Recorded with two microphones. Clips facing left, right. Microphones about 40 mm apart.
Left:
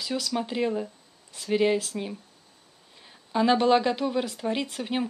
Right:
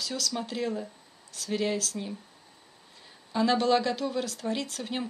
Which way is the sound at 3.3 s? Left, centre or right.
Centre.